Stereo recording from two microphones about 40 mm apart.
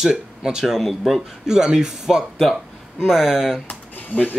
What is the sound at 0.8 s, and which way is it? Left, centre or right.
Speech, centre.